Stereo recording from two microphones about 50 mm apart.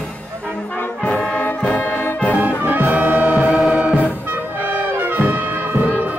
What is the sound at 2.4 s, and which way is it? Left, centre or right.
Music, right.